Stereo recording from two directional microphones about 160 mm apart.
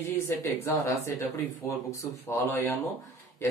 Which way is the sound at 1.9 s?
15° left (ahead or behind).